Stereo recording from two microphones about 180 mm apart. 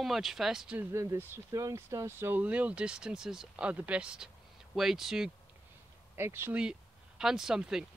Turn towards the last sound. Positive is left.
turn(degrees=-5)  # may be behind; listen again after turning